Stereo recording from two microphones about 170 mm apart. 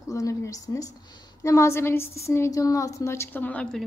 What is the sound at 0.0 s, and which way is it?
A woman's voice, 20° left (ahead or behind).